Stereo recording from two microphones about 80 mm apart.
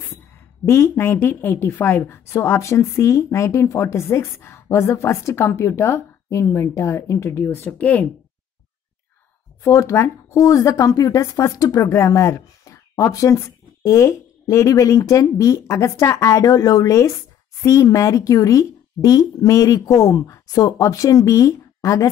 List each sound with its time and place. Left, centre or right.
0.7 s speech: left
9.6 s speech: left